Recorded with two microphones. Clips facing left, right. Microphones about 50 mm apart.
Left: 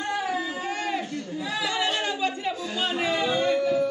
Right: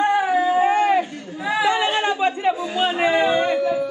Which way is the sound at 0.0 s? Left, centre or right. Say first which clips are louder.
Right 10 dB; right.